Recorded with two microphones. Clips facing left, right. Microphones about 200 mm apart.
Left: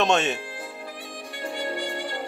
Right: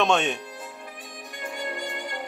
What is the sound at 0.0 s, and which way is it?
Speech, centre (ahead or behind).